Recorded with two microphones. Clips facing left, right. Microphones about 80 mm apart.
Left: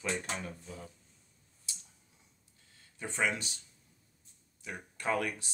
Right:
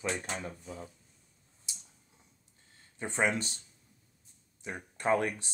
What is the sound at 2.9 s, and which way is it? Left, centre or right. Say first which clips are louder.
Speech: right 3 dB; right.